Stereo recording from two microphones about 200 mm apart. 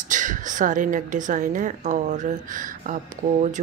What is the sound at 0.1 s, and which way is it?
A woman's voice, 40° right (ahead or behind).